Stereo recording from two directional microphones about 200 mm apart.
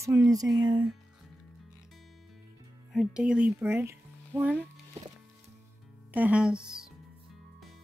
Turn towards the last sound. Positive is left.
turn(degrees=-5)  # may be behind; listen again after turning